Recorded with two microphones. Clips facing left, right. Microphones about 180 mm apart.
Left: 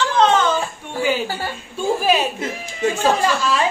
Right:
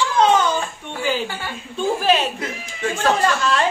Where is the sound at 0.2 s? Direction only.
10° right (ahead or behind).